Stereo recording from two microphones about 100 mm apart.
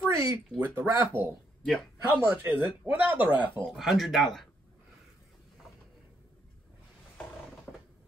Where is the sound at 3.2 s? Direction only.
15° right (ahead or behind).